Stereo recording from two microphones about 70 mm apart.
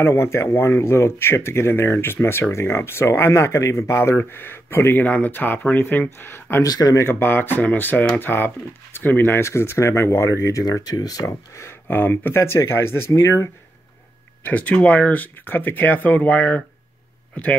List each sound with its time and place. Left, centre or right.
0.0 s speech: left
5.0 s speech: left
6.6 s speech: left
7.0 s speech: left
11.6 s speech: left
12.5 s speech: left
14.4 s speech: left